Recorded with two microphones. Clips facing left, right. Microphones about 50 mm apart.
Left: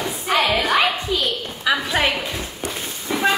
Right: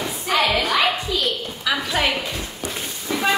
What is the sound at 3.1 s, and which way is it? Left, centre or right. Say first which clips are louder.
Vehicle: left 1 dB; centre.